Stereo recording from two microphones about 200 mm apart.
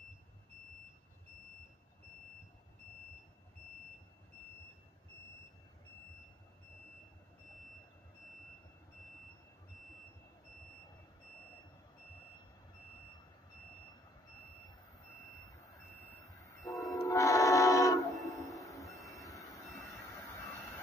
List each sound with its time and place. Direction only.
16.4 s train: 15° left (ahead or behind)
19.9 s jet engine: 15° left (ahead or behind)